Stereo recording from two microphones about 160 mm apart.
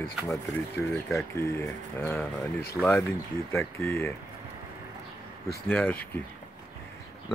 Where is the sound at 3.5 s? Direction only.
15° left (ahead or behind).